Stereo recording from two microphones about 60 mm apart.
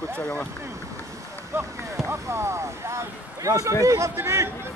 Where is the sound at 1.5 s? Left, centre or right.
Right.